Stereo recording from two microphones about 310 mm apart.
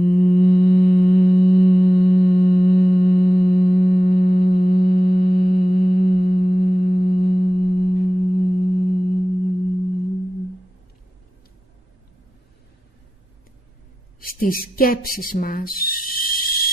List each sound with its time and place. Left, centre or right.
0.0 s mantra: left
14.4 s speech: left